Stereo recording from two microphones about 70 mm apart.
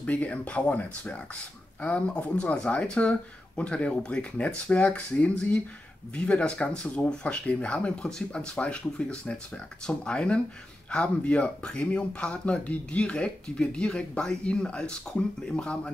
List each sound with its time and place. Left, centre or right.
0.0 s speech: left